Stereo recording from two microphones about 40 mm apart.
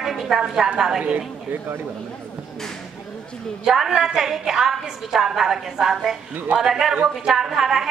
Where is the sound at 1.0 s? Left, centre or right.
Right.